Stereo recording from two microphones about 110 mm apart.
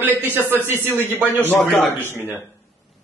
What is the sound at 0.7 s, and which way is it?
Speech, 20° right (ahead or behind).